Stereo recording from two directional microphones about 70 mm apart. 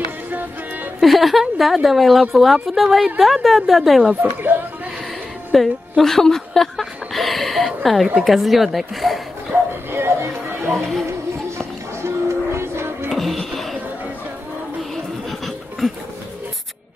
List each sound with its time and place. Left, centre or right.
1.0 s a woman's voice: centre
4.0 s speech: centre
5.5 s a woman's voice: centre
9.9 s music: right
13.1 s music: centre